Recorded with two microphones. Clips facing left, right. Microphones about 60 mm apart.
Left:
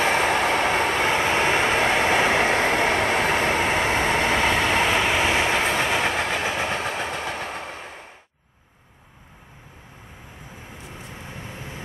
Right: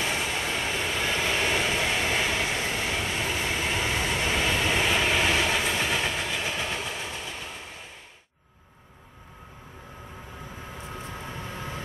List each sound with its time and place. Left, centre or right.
0.0 s vehicle: left
5.1 s train: left
11.5 s vehicle: left